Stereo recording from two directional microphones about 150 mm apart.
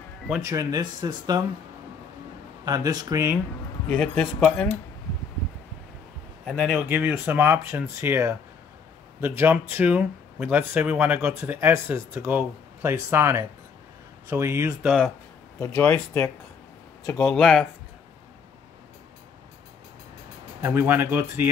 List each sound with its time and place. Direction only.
0.5 s speech: 25° right (ahead or behind)
2.6 s speech: 25° right (ahead or behind)
3.8 s a man's voice: 5° left (ahead or behind)
6.4 s a man's voice: 5° left (ahead or behind)
6.8 s speech: 10° right (ahead or behind)
14.9 s a man's voice: 5° right (ahead or behind)
15.6 s speech: 15° left (ahead or behind)
17.2 s a man's voice: centre (ahead or behind)
20.6 s speech: 15° right (ahead or behind)